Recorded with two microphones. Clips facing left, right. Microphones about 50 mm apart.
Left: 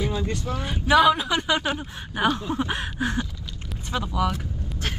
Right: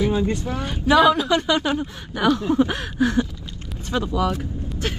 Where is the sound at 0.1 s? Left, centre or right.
Right.